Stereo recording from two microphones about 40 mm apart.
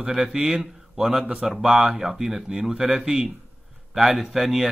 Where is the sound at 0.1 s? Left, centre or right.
Centre.